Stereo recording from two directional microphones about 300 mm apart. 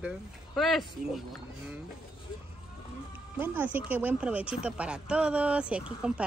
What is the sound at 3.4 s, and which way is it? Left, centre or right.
Speech, centre.